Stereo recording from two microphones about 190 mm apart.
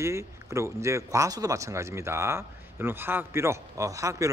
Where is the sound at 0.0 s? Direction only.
15° right (ahead or behind).